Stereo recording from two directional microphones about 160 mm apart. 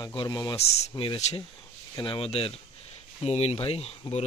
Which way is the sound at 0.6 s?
35° left (ahead or behind).